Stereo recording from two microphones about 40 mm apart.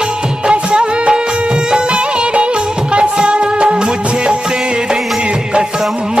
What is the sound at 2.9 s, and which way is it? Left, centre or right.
Music, right.